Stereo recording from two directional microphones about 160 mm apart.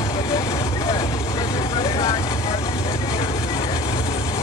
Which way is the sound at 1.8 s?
25° left (ahead or behind).